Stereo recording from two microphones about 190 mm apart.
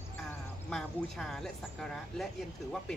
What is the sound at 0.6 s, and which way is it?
A woman's voice, centre (ahead or behind).